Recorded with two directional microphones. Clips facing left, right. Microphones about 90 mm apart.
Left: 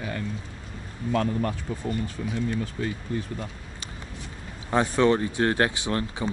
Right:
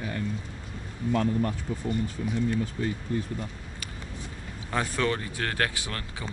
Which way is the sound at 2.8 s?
80° left.